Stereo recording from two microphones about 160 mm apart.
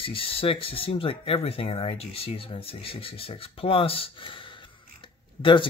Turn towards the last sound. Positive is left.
turn(degrees=30)  # may be behind; listen again after turning